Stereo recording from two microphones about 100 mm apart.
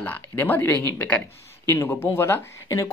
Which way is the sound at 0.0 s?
20° left (ahead or behind).